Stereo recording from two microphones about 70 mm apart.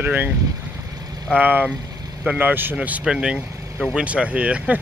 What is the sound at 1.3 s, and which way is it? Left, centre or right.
Speech, right.